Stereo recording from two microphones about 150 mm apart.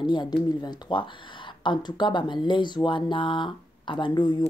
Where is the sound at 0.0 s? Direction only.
30° left (ahead or behind).